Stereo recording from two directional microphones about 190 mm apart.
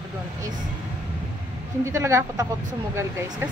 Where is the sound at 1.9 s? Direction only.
15° right (ahead or behind).